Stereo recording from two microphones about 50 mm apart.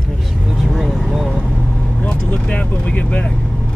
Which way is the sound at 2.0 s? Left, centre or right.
Left.